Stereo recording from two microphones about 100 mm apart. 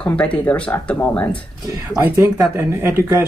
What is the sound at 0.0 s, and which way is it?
Speech, 10° left (ahead or behind).